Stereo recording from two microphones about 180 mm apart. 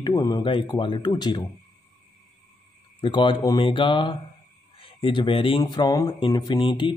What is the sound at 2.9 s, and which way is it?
Speech, 25° left (ahead or behind).